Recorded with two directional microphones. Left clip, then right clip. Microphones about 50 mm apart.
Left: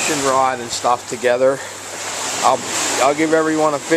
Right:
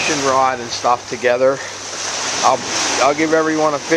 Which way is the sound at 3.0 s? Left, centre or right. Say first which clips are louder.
Even; left.